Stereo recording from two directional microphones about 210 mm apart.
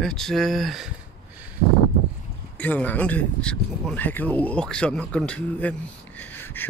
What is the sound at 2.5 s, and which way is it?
Speech, 5° left (ahead or behind).